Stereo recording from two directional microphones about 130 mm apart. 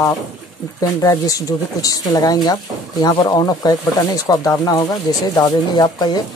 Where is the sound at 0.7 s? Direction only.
25° left (ahead or behind).